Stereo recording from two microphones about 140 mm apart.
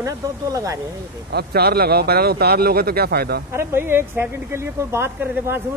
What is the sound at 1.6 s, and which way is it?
A man's voice, 90° right.